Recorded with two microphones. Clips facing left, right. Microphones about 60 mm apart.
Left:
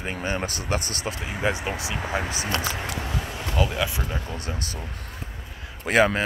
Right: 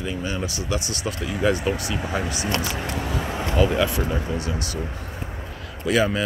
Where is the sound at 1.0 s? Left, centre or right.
Left.